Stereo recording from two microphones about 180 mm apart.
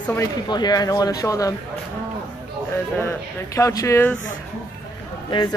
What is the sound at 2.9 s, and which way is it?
Speech, 15° left (ahead or behind).